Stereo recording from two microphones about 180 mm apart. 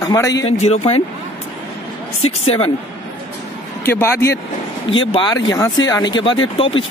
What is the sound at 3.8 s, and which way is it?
Speech, 10° left (ahead or behind).